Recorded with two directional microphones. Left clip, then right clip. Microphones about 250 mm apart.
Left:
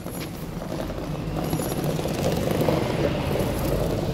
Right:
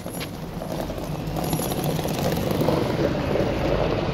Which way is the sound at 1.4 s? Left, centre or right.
Right.